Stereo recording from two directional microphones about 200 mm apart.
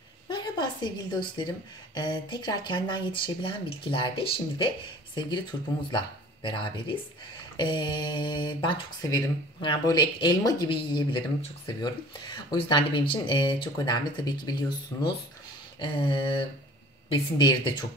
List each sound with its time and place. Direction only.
0.3 s a sound: 20° left (ahead or behind)
2.0 s speech: 20° left (ahead or behind)
15.8 s speech: 25° left (ahead or behind)